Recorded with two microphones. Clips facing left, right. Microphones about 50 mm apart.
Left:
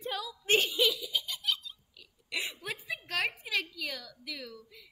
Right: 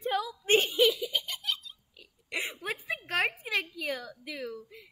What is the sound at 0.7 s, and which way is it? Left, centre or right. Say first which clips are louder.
Giggle: right 4 dB; right.